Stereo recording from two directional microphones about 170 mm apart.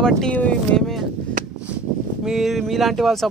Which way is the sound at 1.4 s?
55° right (ahead or behind).